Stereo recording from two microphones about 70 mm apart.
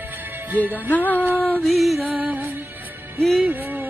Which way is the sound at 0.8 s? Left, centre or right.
Left.